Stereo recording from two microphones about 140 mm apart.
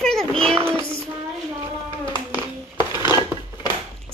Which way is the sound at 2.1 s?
35° left (ahead or behind).